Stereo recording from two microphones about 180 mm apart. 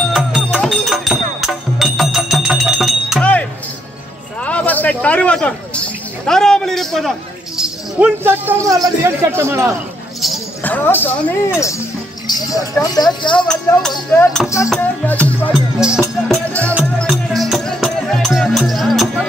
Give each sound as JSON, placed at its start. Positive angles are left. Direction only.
{"t": 0.1, "sound": "music", "side_deg": 0}
{"t": 4.4, "sound": "a sound", "side_deg": 5}
{"t": 6.2, "sound": "a man's voice", "side_deg": 5}
{"t": 10.6, "sound": "speech", "side_deg": 10}
{"t": 12.3, "sound": "a sound", "side_deg": 20}
{"t": 12.8, "sound": "speech", "side_deg": 20}
{"t": 13.5, "sound": "speech", "side_deg": 10}
{"t": 15.8, "sound": "speech", "side_deg": -5}
{"t": 16.3, "sound": "music", "side_deg": 5}
{"t": 16.7, "sound": "music", "side_deg": -5}